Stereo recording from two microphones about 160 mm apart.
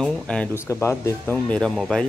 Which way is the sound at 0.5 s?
15° left (ahead or behind).